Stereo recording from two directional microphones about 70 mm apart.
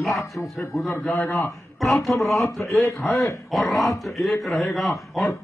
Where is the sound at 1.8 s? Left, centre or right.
Centre.